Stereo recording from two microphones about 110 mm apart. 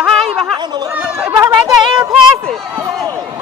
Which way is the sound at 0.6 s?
40° right (ahead or behind).